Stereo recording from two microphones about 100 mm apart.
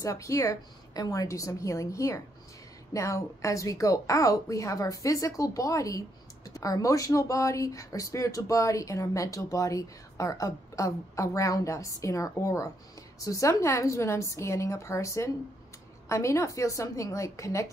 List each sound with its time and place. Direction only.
0.0 s a woman's voice: 30° left (ahead or behind)